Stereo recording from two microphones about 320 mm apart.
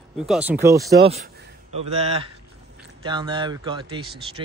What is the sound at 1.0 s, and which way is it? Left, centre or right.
Speech, centre.